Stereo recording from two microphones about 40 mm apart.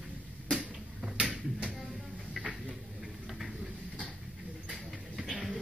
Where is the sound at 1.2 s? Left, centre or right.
Right.